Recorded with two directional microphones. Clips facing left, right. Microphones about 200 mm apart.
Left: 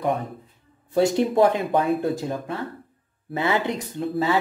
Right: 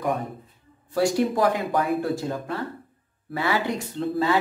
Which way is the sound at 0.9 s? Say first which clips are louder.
Left 3 dB; 20° left (ahead or behind).